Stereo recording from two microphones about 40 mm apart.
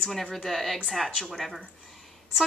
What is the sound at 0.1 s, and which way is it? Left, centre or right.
A woman's voice, centre.